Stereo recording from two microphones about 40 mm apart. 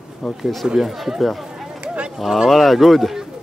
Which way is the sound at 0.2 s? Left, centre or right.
Centre.